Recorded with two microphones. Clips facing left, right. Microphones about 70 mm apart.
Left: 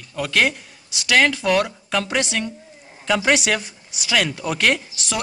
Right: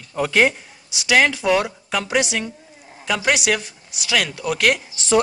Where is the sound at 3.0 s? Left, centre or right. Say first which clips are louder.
Left 2 dB; centre.